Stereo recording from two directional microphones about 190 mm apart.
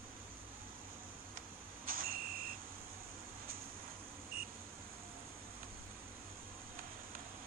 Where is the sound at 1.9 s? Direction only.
50° right (ahead or behind).